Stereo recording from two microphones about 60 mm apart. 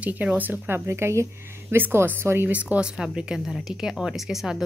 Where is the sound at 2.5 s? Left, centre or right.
Right.